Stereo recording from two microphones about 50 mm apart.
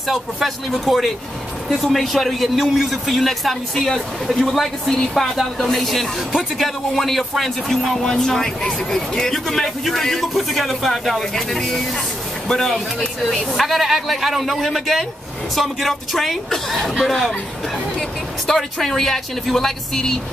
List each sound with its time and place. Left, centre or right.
0.1 s a man's voice: centre
1.7 s a man's voice: centre
8.0 s a man's voice: centre
18.5 s a man's voice: centre